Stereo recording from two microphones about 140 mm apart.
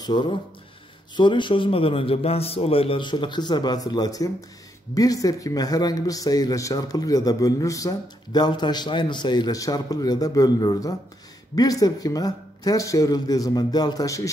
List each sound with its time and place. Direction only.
0.0 s a man's voice: 30° left (ahead or behind)